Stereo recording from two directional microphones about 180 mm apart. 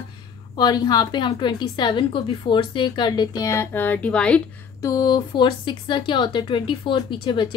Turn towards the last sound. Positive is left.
turn(degrees=25)  # may be behind; listen again after turning